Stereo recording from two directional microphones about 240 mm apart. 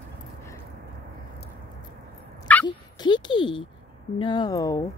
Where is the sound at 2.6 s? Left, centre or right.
Centre.